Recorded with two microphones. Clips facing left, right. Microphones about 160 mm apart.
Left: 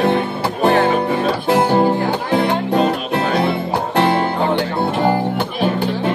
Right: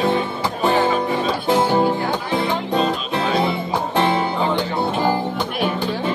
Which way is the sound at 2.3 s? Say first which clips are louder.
Left 5 dB; 60° left (ahead or behind).